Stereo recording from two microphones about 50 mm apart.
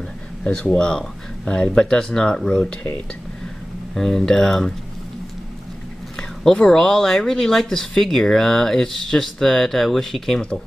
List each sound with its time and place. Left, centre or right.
0.4 s speech: centre
3.9 s speech: centre
6.1 s speech: centre